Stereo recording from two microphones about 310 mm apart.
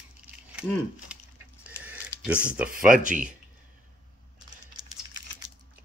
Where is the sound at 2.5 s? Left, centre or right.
Centre.